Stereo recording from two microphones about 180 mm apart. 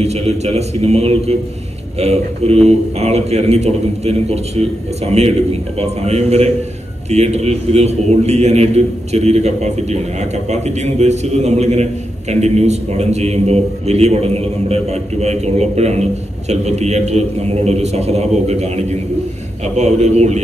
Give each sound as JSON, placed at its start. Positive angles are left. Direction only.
{"t": 0.0, "sound": "a man's voice", "side_deg": -35}